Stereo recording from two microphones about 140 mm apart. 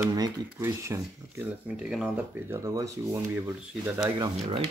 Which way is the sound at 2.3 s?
20° right (ahead or behind).